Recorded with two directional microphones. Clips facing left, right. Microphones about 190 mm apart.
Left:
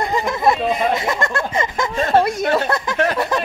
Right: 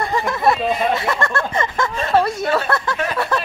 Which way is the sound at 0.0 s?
20° left (ahead or behind).